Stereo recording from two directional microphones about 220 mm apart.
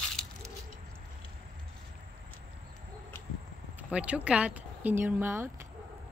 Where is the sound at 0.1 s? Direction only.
Centre (ahead or behind).